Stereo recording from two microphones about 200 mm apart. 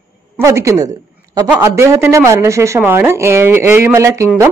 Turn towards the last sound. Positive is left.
turn(degrees=-15)  # may be behind; listen again after turning